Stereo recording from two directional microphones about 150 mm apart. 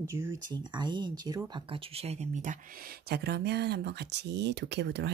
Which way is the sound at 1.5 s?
35° right (ahead or behind).